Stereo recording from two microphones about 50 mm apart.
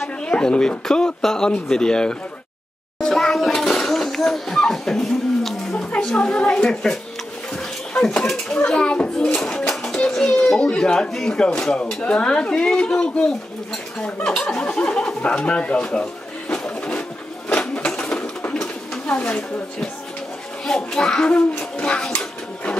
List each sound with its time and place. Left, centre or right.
0.2 s speech: centre
3.0 s a sound: centre
5.9 s a woman's voice: centre
8.6 s speech: centre
9.5 s a sound: centre
10.5 s a woman's voice: centre
16.6 s a sound: left
17.5 s sewing machine: left
18.5 s bird: centre
19.1 s speech: left
20.6 s a woman's voice: centre
21.4 s speech: left